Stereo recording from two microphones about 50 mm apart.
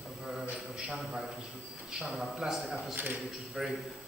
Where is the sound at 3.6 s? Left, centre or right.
Centre.